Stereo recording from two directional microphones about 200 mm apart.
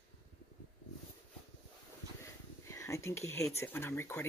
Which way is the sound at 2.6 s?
15° left (ahead or behind).